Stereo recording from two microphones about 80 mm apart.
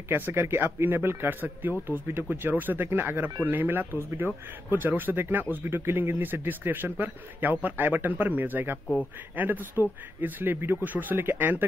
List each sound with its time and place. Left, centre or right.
0.1 s speech: right